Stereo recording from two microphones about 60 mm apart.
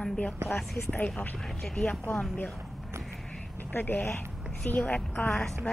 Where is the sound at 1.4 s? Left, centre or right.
Centre.